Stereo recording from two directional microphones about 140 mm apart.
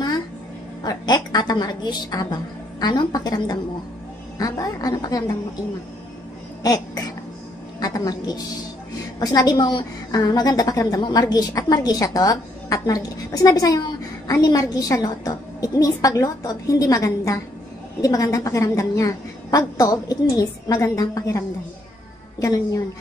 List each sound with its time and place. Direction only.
0.8 s a woman's voice: 30° left (ahead or behind)
6.6 s a sound: 25° left (ahead or behind)
7.8 s a woman's voice: 25° left (ahead or behind)